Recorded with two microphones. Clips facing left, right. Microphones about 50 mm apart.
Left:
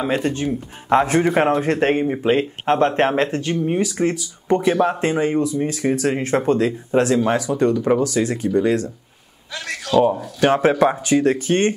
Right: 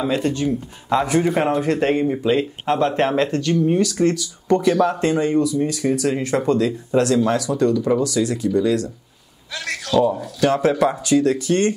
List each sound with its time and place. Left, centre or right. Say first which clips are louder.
0.0 s a man's voice: even; left